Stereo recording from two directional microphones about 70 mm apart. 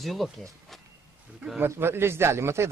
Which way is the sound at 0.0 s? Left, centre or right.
Centre.